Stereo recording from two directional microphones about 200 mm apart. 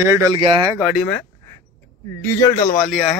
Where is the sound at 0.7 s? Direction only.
5° right (ahead or behind).